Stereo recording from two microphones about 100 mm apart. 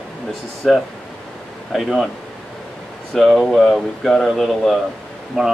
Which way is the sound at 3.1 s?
Centre (ahead or behind).